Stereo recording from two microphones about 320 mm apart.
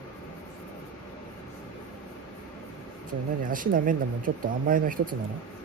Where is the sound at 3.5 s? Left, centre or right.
Right.